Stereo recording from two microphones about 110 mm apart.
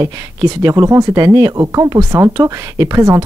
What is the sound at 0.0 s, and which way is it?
Speech, 30° right (ahead or behind).